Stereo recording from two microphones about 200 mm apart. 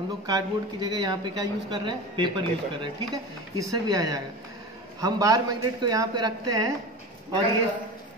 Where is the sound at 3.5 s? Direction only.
15° right (ahead or behind).